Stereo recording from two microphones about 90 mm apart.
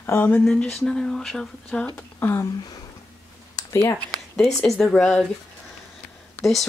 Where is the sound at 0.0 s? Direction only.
25° left (ahead or behind).